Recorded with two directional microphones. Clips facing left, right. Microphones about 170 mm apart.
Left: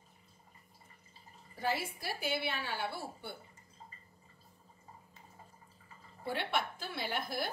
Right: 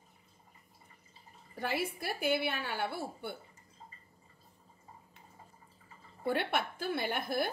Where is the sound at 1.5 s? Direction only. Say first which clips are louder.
Right 1 dB; 60° right (ahead or behind).